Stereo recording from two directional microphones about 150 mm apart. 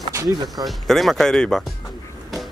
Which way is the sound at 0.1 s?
25° right (ahead or behind).